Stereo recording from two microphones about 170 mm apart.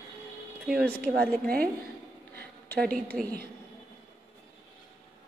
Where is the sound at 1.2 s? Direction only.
60° right (ahead or behind).